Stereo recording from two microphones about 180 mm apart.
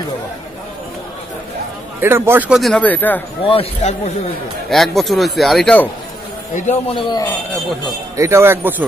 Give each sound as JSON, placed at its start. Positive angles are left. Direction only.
{"t": 2.0, "sound": "speech", "side_deg": -15}
{"t": 3.4, "sound": "a man's voice", "side_deg": 35}
{"t": 4.6, "sound": "speech", "side_deg": 0}
{"t": 6.5, "sound": "a man's voice", "side_deg": 40}
{"t": 6.9, "sound": "speech", "side_deg": 25}
{"t": 8.2, "sound": "speech", "side_deg": -15}